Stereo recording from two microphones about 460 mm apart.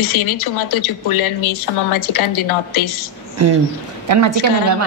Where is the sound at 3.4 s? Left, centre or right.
Right.